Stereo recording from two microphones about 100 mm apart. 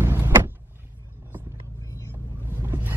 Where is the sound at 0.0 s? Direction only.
25° right (ahead or behind).